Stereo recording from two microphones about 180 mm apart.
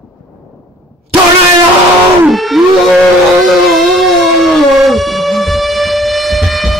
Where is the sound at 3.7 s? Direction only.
Centre (ahead or behind).